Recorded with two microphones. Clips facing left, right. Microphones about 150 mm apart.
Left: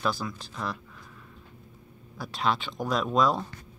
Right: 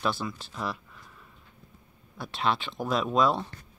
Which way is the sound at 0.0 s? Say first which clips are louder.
Even; centre (ahead or behind).